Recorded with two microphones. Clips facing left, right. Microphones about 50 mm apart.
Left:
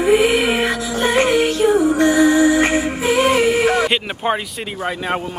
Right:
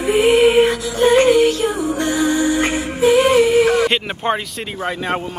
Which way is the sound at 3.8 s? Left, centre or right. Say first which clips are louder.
Right 1 dB; centre.